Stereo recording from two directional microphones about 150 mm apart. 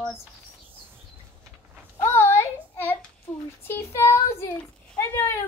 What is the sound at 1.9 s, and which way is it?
Child singing, 15° left (ahead or behind).